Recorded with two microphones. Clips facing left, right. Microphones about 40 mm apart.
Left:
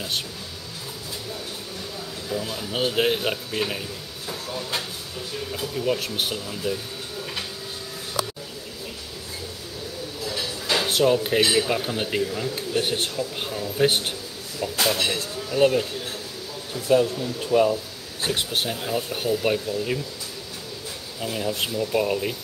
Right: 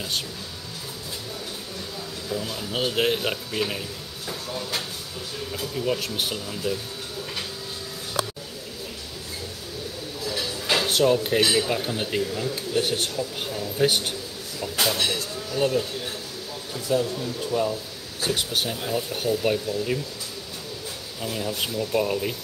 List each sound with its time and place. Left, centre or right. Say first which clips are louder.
2.2 s speech: left 1 dB; centre
10.2 s a man's voice: right 1 dB; centre
16.9 s speech: left 4 dB; left
18.3 s a man's voice: left 1 dB; centre
21.2 s a man's voice: left 2 dB; centre